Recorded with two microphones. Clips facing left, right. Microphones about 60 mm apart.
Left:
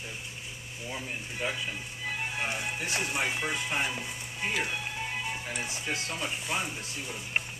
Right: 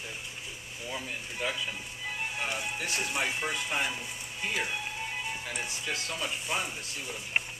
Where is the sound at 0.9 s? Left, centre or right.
Centre.